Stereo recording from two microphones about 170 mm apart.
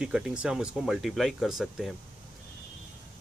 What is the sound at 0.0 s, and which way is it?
Speech, 5° right (ahead or behind).